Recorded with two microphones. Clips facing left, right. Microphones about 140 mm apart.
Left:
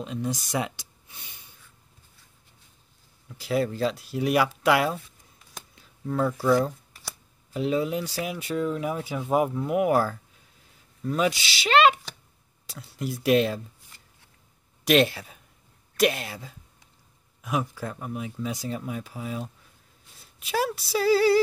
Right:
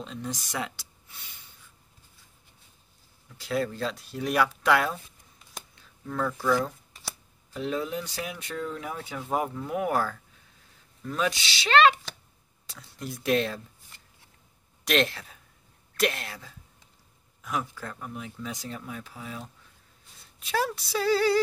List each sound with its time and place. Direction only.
0.0 s speech: 10° left (ahead or behind)
3.3 s speech: 5° left (ahead or behind)
6.0 s speech: 25° left (ahead or behind)
7.5 s speech: 10° left (ahead or behind)
11.1 s speech: 10° left (ahead or behind)
14.9 s speech: 10° left (ahead or behind)
17.4 s speech: 10° left (ahead or behind)